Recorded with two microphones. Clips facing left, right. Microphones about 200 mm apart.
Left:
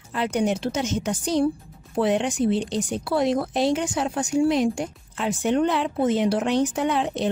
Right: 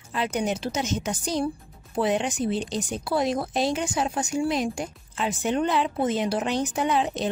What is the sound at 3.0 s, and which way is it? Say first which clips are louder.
Speech: left 3 dB; 65° left (ahead or behind).